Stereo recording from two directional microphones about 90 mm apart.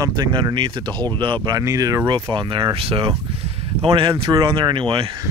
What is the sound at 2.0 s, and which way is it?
Speech, 60° right (ahead or behind).